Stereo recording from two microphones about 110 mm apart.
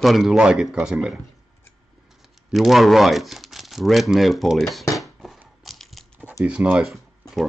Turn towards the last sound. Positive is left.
turn(degrees=-5)  # may be behind; listen again after turning